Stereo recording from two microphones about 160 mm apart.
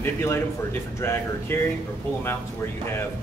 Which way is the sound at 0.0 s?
15° left (ahead or behind).